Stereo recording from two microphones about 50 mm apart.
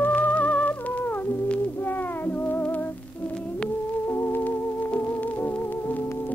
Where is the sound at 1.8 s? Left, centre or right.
Left.